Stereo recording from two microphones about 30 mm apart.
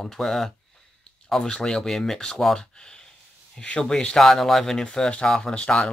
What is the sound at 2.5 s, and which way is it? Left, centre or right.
Speech, left.